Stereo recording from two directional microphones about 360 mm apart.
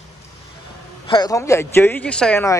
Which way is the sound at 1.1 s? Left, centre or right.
Centre.